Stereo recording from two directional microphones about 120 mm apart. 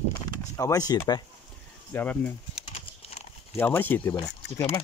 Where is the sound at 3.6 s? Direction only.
15° left (ahead or behind).